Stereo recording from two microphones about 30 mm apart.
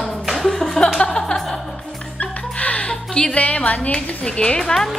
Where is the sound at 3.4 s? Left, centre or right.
Left.